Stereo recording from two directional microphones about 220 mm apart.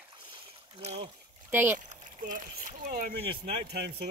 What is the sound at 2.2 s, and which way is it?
Speech, 40° right (ahead or behind).